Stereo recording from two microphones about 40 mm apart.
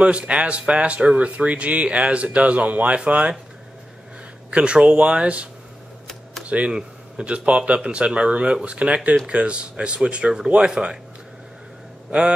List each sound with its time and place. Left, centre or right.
0.0 s speech: right
4.5 s speech: right
12.1 s speech: right